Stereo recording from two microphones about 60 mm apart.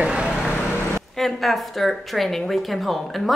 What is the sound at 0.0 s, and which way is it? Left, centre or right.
Vehicle, centre.